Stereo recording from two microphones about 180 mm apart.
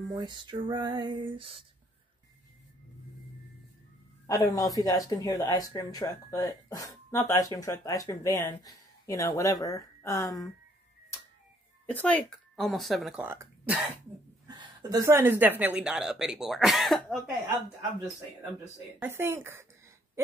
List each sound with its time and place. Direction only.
0.1 s music: 25° right (ahead or behind)
4.3 s speech: 20° left (ahead or behind)
11.8 s speech: 10° left (ahead or behind); by 13.7 s 10° right (ahead or behind)
14.5 s a woman's voice: 20° right (ahead or behind); by 17.2 s centre (ahead or behind)
18.9 s speech: 10° right (ahead or behind)